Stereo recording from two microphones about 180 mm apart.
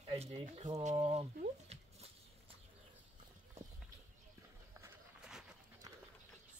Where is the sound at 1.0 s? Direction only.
30° right (ahead or behind).